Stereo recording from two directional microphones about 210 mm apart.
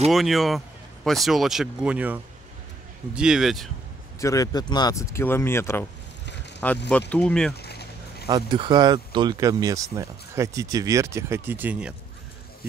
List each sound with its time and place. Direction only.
0.1 s speech: centre (ahead or behind)
4.2 s speech: 15° left (ahead or behind)
6.9 s speech: 5° left (ahead or behind)
7.5 s a sound: 50° left (ahead or behind)
8.3 s speech: 20° right (ahead or behind)